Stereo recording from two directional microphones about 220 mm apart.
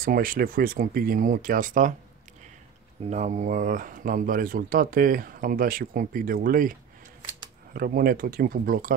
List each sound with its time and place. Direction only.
0.0 s speech: 40° right (ahead or behind)
3.1 s speech: 35° right (ahead or behind)